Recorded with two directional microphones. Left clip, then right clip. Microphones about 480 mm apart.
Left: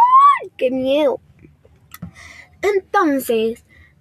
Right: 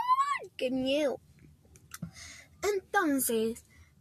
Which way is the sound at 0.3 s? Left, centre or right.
Right.